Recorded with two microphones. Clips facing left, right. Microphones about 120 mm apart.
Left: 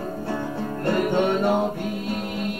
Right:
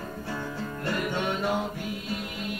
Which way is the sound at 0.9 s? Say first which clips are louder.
Left 8 dB; 50° left (ahead or behind).